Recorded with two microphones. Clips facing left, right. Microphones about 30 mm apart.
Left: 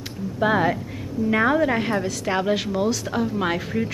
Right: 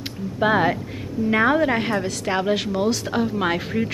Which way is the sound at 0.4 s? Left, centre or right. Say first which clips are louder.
Right 1 dB; centre.